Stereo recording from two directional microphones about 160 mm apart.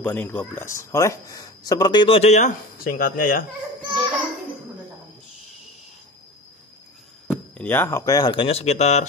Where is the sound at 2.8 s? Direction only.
65° left (ahead or behind).